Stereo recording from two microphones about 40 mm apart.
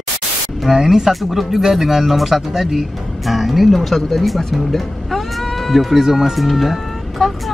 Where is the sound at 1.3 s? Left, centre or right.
Centre.